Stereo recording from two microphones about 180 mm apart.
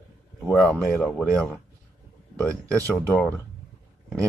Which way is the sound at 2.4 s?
15° right (ahead or behind).